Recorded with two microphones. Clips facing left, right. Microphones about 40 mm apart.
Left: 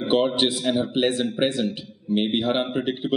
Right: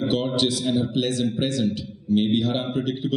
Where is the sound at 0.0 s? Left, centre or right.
Left.